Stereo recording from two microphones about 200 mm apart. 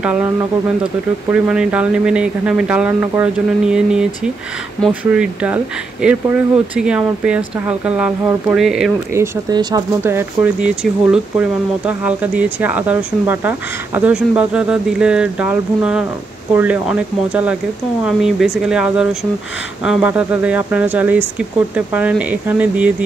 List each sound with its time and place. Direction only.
0.0 s speech: 5° right (ahead or behind)
9.1 s speech: 15° right (ahead or behind)